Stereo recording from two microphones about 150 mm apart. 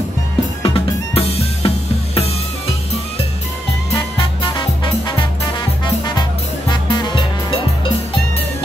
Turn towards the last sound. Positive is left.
turn(degrees=30)  # may be behind; listen again after turning